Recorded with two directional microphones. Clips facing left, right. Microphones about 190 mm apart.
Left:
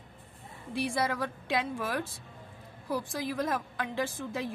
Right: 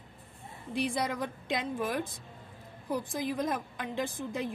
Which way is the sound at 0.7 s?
15° right (ahead or behind).